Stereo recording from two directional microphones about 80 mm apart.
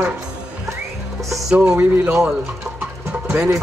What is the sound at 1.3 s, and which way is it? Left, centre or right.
Music, centre.